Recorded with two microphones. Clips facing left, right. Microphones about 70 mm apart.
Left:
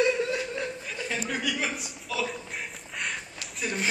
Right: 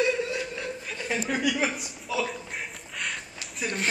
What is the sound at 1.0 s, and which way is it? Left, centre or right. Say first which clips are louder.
Chuckle: right 3 dB; centre.